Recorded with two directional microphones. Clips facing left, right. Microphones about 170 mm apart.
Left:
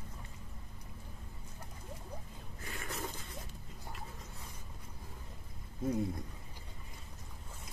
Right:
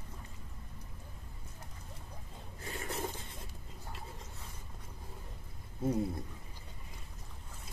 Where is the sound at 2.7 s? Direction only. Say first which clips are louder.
Right 3 dB; 30° right (ahead or behind).